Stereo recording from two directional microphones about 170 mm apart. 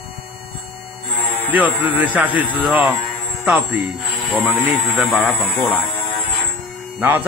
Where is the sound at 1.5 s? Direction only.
10° right (ahead or behind).